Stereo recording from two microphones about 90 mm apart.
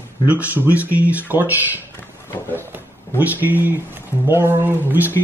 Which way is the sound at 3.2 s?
20° right (ahead or behind).